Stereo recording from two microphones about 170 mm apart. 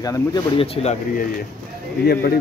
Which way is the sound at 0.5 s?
35° left (ahead or behind).